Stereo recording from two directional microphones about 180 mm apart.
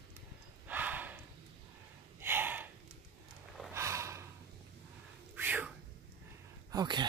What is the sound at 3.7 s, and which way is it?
Gasp, 15° right (ahead or behind).